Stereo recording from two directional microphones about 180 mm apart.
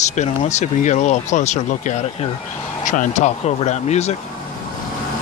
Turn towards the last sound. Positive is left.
turn(degrees=40)  # may be behind; listen again after turning